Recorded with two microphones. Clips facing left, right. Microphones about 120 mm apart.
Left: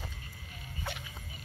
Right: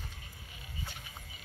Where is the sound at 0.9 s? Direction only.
65° left (ahead or behind).